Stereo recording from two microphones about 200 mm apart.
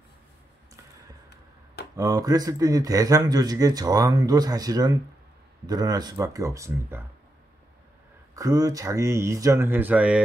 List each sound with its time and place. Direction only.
2.0 s a man's voice: 15° right (ahead or behind)
8.4 s speech: 15° right (ahead or behind)